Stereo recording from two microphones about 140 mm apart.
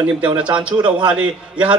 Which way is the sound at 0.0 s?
10° right (ahead or behind).